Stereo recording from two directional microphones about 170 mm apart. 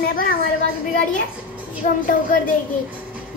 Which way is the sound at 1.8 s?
55° left (ahead or behind).